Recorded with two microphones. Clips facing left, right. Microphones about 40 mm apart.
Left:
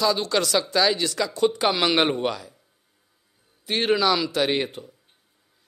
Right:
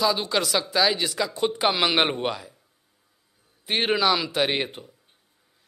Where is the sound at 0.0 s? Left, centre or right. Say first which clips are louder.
Left 1 dB; centre.